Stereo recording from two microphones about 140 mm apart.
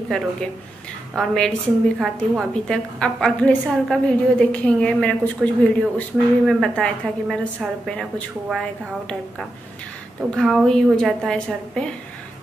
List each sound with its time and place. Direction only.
1.1 s a woman's voice: centre (ahead or behind)
10.3 s a woman's voice: centre (ahead or behind)